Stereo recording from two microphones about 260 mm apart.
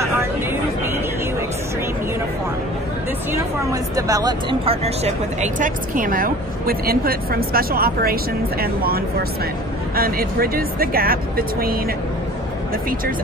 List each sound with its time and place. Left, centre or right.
0.0 s chatter: centre
3.3 s speech: centre; by 11.8 s right